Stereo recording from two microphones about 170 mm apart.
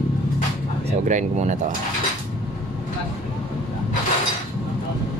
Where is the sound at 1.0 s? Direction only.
45° right (ahead or behind).